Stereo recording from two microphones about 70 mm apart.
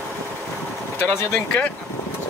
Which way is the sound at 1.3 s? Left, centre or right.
Centre.